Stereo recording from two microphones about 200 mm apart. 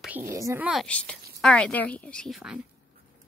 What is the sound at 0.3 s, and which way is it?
Speech, 15° right (ahead or behind).